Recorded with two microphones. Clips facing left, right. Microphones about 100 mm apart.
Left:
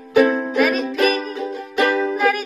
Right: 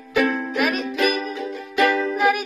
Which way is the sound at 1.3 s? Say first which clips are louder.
Left 1 dB; 40° left (ahead or behind).